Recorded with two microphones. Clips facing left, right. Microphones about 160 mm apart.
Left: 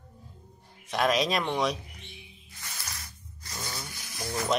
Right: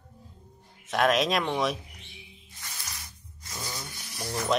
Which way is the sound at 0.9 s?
Centre (ahead or behind).